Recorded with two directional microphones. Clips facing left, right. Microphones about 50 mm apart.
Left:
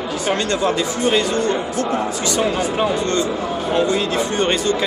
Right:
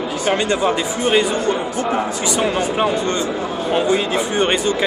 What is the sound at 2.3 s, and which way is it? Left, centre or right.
A man's voice, right.